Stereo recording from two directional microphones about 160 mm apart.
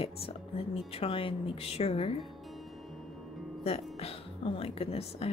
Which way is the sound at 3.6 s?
40° left (ahead or behind).